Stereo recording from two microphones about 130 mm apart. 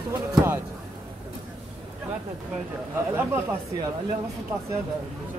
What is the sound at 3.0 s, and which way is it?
Speech, 20° right (ahead or behind).